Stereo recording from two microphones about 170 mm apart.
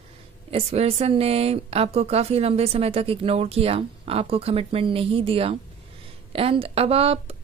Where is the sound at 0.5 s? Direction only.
35° right (ahead or behind).